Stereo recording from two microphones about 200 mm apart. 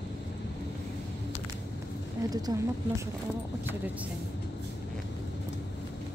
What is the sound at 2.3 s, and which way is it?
Speech, 20° right (ahead or behind).